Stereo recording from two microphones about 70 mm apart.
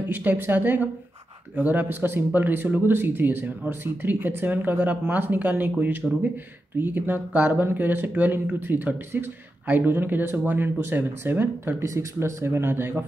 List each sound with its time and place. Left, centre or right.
0.1 s speech: right
11.8 s speech: right